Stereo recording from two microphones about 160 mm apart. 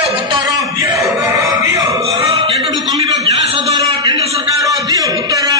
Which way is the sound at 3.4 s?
35° right (ahead or behind).